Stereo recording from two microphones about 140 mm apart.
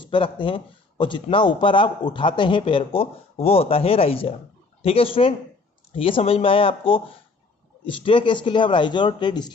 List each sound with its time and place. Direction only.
0.0 s speech: 35° left (ahead or behind)